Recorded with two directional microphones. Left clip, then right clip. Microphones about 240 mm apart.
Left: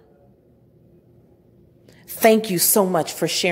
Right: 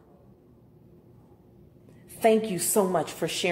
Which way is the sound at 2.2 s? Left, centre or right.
Left.